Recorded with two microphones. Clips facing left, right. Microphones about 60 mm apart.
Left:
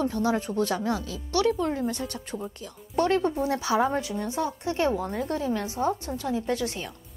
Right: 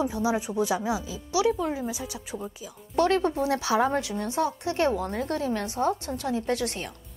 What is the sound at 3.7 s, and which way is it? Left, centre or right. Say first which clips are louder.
A woman's voice: even; right.